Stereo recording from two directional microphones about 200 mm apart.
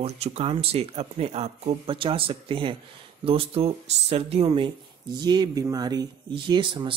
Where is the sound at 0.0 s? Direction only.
30° right (ahead or behind).